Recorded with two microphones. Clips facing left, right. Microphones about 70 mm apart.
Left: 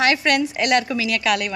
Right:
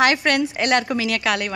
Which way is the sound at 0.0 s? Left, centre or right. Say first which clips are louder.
Right 1 dB; right.